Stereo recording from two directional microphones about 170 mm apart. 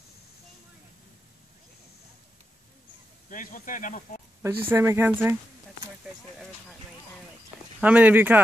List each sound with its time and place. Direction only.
3.3 s speech: 50° left (ahead or behind)
4.4 s speech: 15° right (ahead or behind)
7.8 s speech: 10° right (ahead or behind)